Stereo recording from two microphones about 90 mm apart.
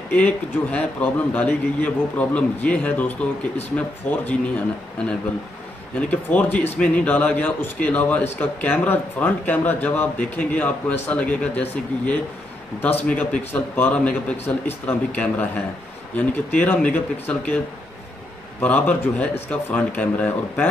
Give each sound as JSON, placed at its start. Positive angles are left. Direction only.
{"t": 0.1, "sound": "speech", "side_deg": 15}
{"t": 5.9, "sound": "speech", "side_deg": 15}
{"t": 18.6, "sound": "speech", "side_deg": 15}